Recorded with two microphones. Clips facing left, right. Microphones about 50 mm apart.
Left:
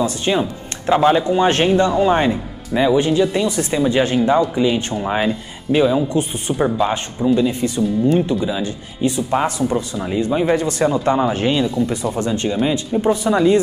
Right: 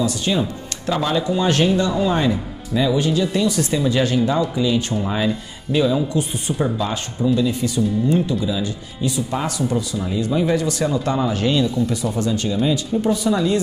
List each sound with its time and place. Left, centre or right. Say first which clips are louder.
0.0 s speech: left 2 dB; left